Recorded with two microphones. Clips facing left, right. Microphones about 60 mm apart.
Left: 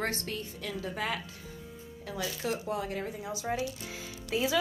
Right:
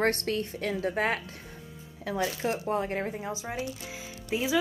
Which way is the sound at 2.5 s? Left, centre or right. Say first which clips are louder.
Right 4 dB; right.